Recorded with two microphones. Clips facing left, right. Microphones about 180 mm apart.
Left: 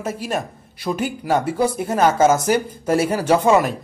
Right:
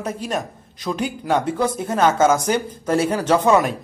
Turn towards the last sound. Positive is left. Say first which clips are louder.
# left 1 dB
turn(degrees=5)  # may be behind; listen again after turning